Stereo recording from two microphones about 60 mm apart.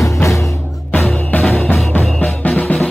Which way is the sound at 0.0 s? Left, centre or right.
Left.